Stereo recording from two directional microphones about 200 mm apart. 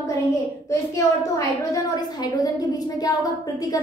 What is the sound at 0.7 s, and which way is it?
A woman's voice, 15° left (ahead or behind).